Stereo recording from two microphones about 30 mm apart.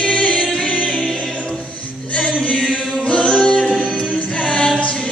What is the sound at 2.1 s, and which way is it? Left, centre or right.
Music, left.